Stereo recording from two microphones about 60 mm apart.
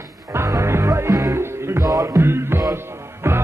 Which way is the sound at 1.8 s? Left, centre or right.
Right.